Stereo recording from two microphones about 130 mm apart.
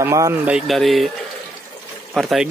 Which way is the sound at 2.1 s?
5° right (ahead or behind).